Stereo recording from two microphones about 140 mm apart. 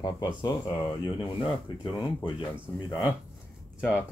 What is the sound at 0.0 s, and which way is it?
Speech, 30° left (ahead or behind).